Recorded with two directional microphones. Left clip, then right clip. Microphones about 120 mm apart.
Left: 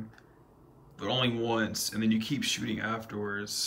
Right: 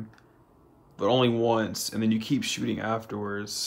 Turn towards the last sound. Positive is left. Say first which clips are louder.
# right 2 dB
turn(degrees=-40)  # may be behind; listen again after turning